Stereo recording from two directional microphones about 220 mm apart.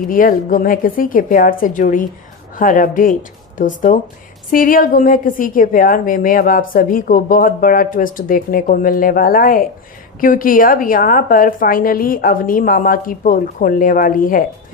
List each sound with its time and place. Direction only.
0.1 s a woman's voice: 40° left (ahead or behind)